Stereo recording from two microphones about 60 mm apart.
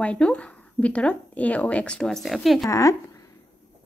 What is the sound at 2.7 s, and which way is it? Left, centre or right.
Speech, left.